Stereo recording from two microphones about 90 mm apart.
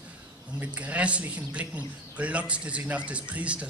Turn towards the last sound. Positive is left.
turn(degrees=-15)  # may be behind; listen again after turning